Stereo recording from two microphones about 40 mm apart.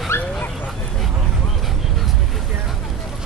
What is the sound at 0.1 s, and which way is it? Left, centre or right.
Bow-wow, left.